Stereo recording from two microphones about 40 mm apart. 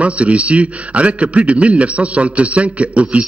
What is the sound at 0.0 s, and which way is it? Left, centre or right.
A man's voice, right.